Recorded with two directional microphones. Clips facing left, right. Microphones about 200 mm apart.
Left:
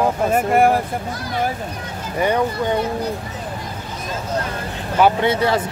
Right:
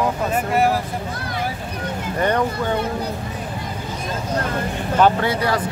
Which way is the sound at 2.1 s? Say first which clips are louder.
Left 2 dB; 10° left (ahead or behind).